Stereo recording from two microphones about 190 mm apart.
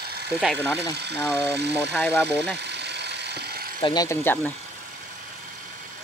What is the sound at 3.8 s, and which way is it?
Speech, 20° left (ahead or behind).